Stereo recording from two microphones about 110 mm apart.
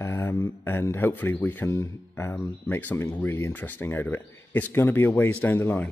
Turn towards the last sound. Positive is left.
turn(degrees=15)  # may be behind; listen again after turning